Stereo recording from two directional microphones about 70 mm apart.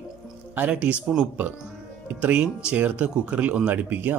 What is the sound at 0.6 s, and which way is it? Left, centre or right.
Speech, right.